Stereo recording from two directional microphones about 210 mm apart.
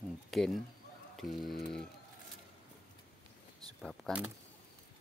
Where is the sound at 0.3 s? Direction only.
Centre (ahead or behind).